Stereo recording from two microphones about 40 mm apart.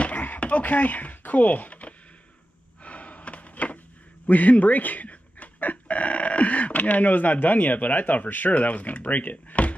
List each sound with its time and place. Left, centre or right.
0.0 s a sound: left
2.8 s gasp: left
4.3 s speech: left